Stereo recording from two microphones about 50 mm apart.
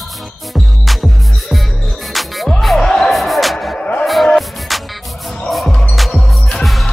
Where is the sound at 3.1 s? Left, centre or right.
Centre.